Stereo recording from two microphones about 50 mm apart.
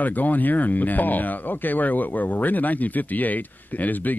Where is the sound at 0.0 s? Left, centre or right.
Left.